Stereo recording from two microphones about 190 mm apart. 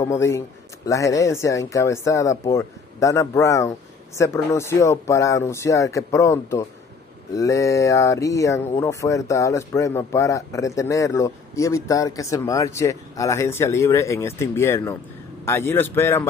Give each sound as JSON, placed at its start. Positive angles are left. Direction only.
{"t": 0.0, "sound": "speech", "side_deg": 15}